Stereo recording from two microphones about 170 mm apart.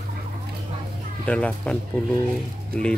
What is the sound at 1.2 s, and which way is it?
Speech, 5° left (ahead or behind).